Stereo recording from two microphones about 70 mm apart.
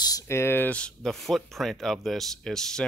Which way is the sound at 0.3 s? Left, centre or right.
Left.